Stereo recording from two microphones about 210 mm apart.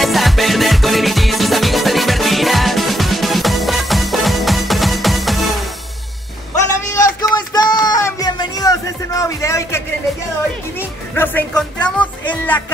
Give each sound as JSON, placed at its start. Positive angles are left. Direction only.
{"t": 0.0, "sound": "music", "side_deg": 0}
{"t": 6.9, "sound": "a sound", "side_deg": 20}
{"t": 11.1, "sound": "music", "side_deg": 10}